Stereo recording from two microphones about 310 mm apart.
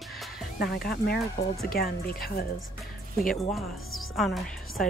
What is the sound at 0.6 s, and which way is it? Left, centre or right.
Speech, left.